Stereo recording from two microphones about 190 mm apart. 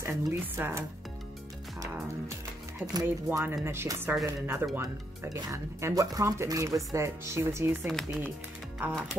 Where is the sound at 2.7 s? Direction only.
15° right (ahead or behind).